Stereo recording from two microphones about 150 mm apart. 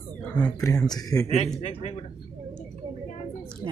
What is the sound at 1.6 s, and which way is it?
Speech, 45° left (ahead or behind).